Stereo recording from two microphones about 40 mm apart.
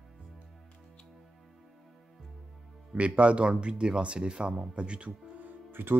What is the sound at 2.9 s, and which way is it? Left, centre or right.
Speech, right.